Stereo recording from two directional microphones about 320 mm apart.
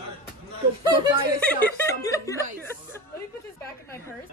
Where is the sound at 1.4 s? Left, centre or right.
Centre.